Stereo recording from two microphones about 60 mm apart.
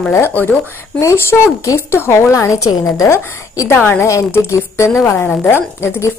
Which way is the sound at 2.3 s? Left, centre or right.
Left.